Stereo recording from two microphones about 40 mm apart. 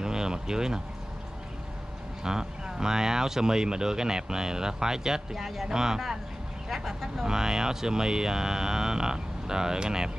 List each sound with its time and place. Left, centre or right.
0.0 s a sound: centre
2.2 s speech: centre
6.7 s speech: centre